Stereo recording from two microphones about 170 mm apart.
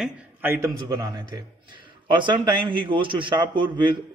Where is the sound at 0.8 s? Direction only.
25° right (ahead or behind).